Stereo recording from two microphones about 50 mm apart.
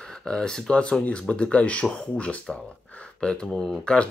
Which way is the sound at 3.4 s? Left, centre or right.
Centre.